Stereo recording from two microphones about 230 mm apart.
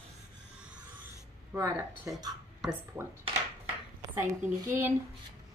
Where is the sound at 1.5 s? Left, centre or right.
Centre.